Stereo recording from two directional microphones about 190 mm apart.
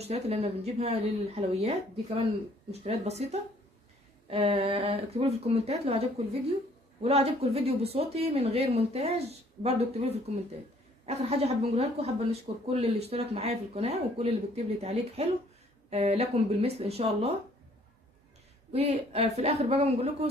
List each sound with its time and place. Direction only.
0.0 s speech: 35° right (ahead or behind)
18.7 s speech: 30° right (ahead or behind)